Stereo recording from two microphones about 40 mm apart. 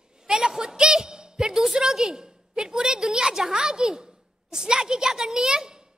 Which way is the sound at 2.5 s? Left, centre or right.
Centre.